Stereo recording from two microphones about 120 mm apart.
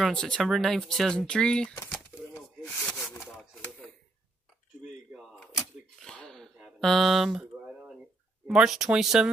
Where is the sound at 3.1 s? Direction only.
25° left (ahead or behind).